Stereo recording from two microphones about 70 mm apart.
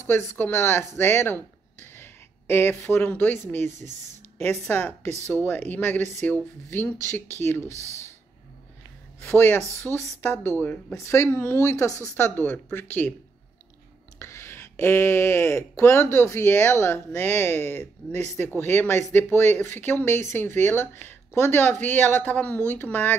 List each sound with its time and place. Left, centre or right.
0.0 s speech: left
9.2 s speech: left
12.2 s speech: left
14.2 s speech: left